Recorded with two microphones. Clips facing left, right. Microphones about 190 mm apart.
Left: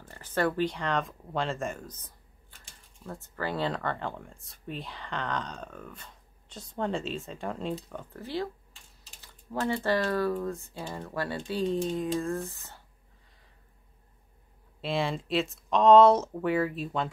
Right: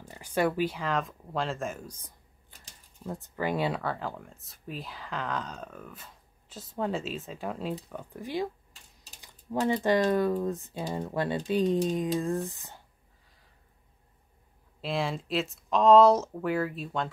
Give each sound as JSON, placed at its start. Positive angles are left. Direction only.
{"t": 0.0, "sound": "speech", "side_deg": -15}
{"t": 9.2, "sound": "typing", "side_deg": -15}
{"t": 9.8, "sound": "speech", "side_deg": -20}
{"t": 14.8, "sound": "speech", "side_deg": 0}